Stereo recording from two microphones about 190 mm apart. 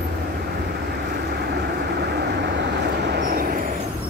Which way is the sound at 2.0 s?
65° right (ahead or behind).